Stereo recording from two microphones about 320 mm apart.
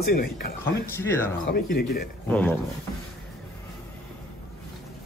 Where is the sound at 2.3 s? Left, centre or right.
Centre.